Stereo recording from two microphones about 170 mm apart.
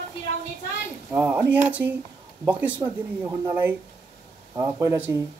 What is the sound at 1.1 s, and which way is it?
Speech, 10° right (ahead or behind).